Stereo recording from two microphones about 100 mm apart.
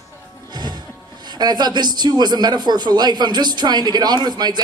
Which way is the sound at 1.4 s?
45° right (ahead or behind).